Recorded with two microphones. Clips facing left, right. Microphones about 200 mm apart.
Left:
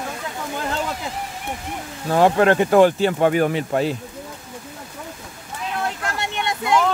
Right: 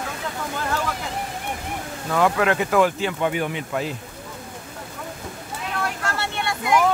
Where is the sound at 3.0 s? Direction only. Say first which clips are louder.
Left 6 dB; 40° left (ahead or behind).